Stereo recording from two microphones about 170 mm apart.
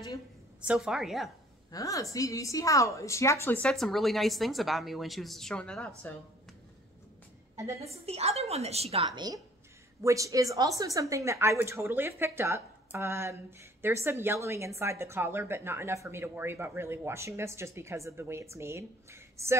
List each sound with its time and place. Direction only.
0.7 s a woman's voice: centre (ahead or behind)
1.7 s a woman's voice: 20° left (ahead or behind)
7.5 s a woman's voice: 15° right (ahead or behind)
7.9 s a woman's voice: 35° right (ahead or behind)
10.0 s a woman's voice: 20° right (ahead or behind)